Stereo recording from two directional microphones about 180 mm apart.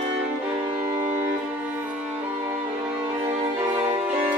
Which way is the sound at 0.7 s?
25° right (ahead or behind).